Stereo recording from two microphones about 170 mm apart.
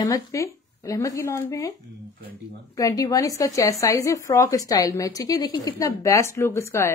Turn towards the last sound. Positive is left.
turn(degrees=15)  # may be behind; listen again after turning